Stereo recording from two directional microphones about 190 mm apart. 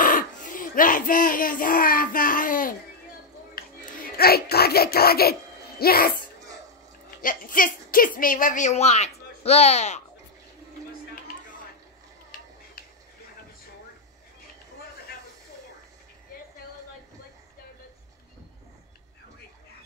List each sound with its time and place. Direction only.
0.0 s speech: 45° left (ahead or behind)
7.2 s a woman's voice: 45° left (ahead or behind)
12.3 s finger snapping: 50° left (ahead or behind)